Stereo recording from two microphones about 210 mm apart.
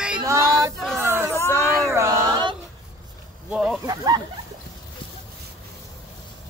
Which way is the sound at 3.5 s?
5° right (ahead or behind).